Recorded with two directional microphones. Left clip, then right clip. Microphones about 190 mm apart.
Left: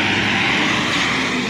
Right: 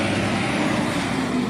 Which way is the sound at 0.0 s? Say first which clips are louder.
Left 6 dB; 55° right (ahead or behind).